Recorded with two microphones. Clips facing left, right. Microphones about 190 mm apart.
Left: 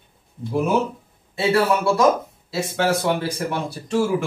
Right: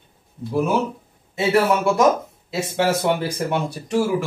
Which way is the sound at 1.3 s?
20° right (ahead or behind).